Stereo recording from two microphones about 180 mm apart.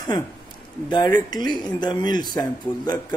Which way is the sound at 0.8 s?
25° left (ahead or behind).